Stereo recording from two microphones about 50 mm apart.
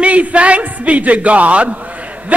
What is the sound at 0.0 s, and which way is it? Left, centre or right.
A man's voice, right.